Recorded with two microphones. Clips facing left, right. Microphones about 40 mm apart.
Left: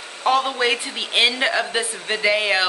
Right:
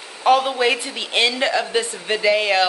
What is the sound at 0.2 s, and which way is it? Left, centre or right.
A woman's voice, centre.